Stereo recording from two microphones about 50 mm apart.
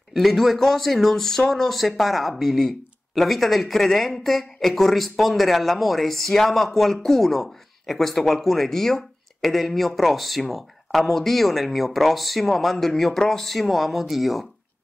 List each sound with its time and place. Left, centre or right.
0.1 s speech: centre